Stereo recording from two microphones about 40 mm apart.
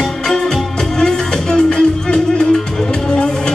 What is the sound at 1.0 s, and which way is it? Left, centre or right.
Music, centre.